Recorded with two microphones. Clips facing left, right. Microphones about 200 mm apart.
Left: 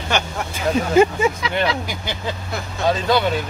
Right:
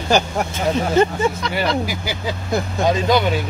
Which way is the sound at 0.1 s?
35° right (ahead or behind).